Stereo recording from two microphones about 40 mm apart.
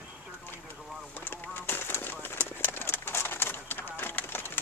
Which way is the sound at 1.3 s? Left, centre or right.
Left.